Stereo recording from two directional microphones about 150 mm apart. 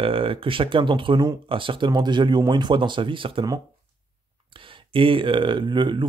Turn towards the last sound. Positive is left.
turn(degrees=-30)  # may be behind; listen again after turning